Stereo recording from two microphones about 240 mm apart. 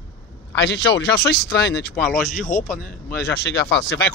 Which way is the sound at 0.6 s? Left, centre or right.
Left.